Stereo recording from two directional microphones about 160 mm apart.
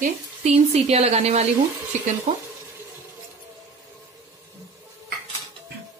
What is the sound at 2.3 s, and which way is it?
Stir, 50° right (ahead or behind).